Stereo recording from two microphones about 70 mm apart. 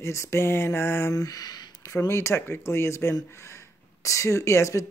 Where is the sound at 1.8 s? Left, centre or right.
Left.